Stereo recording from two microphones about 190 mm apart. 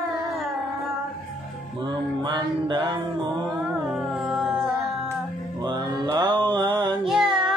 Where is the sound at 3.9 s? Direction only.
Centre (ahead or behind).